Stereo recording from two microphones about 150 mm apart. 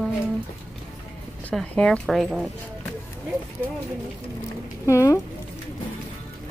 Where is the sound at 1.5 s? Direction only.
5° left (ahead or behind).